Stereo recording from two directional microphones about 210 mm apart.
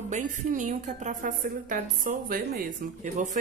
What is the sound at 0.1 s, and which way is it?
Speech, 35° right (ahead or behind).